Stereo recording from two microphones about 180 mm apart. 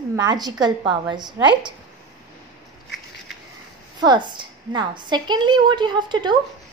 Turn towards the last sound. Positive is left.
turn(degrees=-25)  # may be behind; listen again after turning